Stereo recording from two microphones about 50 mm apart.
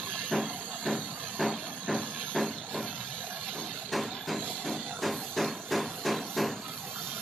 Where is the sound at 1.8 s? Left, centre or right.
Centre.